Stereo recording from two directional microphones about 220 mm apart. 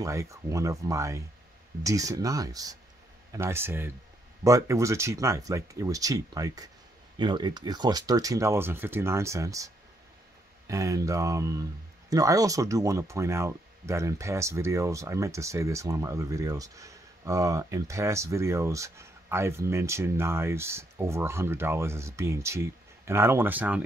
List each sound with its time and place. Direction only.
0.0 s speech: 15° right (ahead or behind)
10.7 s speech: 15° right (ahead or behind)